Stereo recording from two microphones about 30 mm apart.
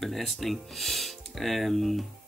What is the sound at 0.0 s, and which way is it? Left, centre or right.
Speech, centre.